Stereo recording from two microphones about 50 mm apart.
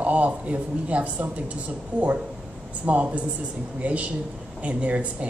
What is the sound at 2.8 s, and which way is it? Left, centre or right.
Speech, right.